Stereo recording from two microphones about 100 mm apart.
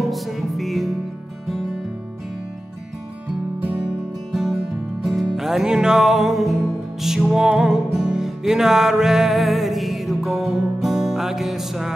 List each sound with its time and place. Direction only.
0.1 s music: centre (ahead or behind)
4.3 s music: centre (ahead or behind)